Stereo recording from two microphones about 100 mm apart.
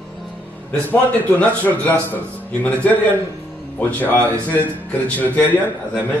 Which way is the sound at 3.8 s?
15° left (ahead or behind).